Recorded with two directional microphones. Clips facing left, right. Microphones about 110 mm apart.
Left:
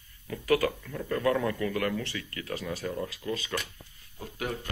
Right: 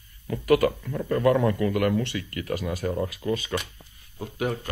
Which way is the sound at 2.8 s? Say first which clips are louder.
Right 6 dB; 40° right (ahead or behind).